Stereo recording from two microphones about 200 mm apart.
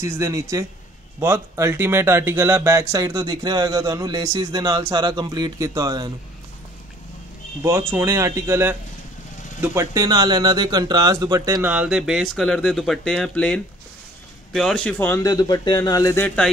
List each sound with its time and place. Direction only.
0.0 s speech: 15° right (ahead or behind)
7.9 s speech: 15° right (ahead or behind); by 16.4 s 10° left (ahead or behind)